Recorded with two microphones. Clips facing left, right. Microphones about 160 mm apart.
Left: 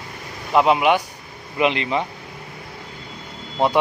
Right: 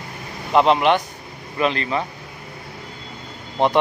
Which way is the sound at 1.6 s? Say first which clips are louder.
Left 1 dB; 20° left (ahead or behind).